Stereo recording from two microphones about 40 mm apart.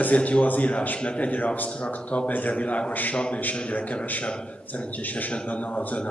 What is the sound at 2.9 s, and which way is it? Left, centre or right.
Speech, left.